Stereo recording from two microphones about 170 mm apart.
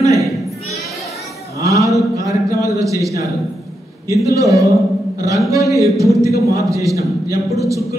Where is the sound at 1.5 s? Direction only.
20° right (ahead or behind).